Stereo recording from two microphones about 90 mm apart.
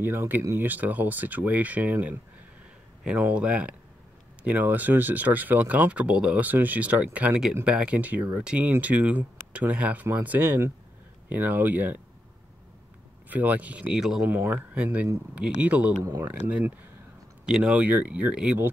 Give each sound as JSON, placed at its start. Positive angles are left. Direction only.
{"t": 0.0, "sound": "speech", "side_deg": -25}
{"t": 13.3, "sound": "speech", "side_deg": -15}
{"t": 14.3, "sound": "speech", "side_deg": -20}